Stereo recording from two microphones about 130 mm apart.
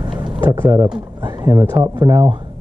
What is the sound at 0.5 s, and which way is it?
Speech, 20° right (ahead or behind).